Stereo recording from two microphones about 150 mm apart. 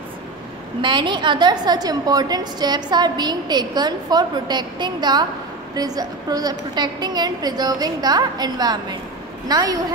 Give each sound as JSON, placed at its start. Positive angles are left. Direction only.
{"t": 0.8, "sound": "a woman's voice", "side_deg": -30}